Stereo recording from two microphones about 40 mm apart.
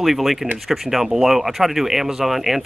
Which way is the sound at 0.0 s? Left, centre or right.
Centre.